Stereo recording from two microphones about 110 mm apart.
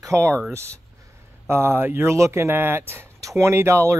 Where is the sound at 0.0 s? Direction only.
30° right (ahead or behind).